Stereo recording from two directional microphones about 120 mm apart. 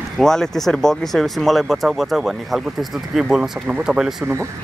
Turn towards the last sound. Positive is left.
turn(degrees=-5)  # may be behind; listen again after turning